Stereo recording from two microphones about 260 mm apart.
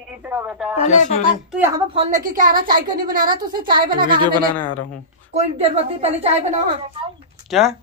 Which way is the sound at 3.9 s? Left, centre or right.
Centre.